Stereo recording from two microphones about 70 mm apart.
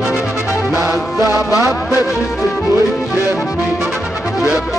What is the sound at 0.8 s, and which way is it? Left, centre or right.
Music, right.